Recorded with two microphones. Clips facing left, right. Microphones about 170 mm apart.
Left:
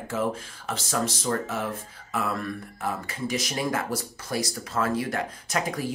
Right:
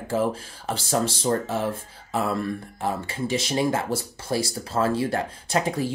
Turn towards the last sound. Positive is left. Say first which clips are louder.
# right 4 dB
turn(degrees=-30)  # may be behind; listen again after turning